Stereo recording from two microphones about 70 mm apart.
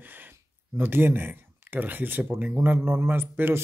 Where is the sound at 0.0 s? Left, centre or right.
Right.